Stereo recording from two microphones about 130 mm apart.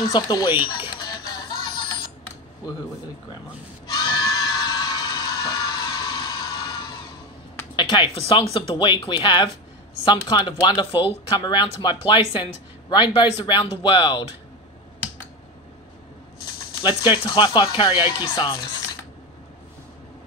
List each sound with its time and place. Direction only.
0.0 s music: 30° left (ahead or behind)
2.6 s speech: 30° left (ahead or behind)
3.8 s neigh: 35° left (ahead or behind)
7.7 s speech: 35° left (ahead or behind)
16.8 s speech: 35° left (ahead or behind)